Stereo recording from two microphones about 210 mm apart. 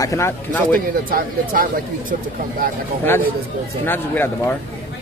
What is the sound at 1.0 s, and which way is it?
Speech, 40° right (ahead or behind).